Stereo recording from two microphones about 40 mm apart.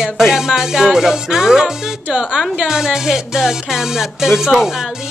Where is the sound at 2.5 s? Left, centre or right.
Centre.